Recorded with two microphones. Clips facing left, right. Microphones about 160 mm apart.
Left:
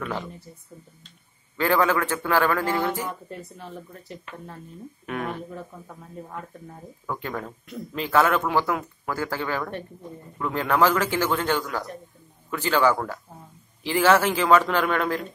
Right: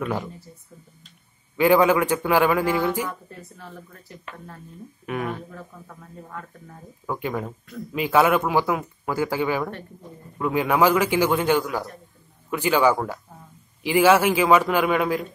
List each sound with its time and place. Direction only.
1.6 s speech: 15° right (ahead or behind)
3.1 s speech: 20° left (ahead or behind)
5.0 s speech: centre (ahead or behind)
7.1 s speech: 10° right (ahead or behind)